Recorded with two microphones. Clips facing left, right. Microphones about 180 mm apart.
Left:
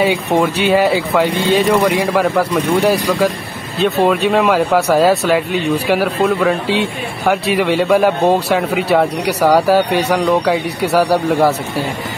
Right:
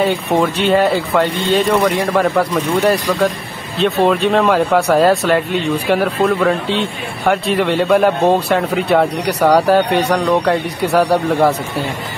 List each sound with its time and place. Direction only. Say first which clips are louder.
0.0 s speech: left 1 dB; 5° left (ahead or behind)